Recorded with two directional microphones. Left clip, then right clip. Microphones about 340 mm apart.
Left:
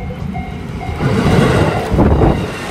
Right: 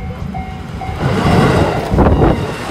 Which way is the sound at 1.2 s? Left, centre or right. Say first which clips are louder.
Right 1 dB; centre.